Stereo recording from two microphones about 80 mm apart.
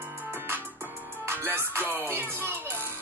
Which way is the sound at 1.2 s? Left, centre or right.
Right.